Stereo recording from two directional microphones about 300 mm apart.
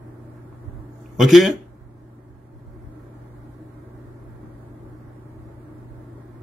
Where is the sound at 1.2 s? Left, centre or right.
Centre.